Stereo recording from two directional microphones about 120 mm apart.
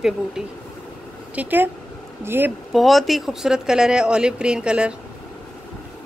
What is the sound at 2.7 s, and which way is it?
Speech, centre (ahead or behind).